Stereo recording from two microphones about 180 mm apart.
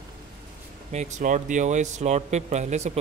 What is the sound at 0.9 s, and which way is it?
A man's voice, 45° right (ahead or behind).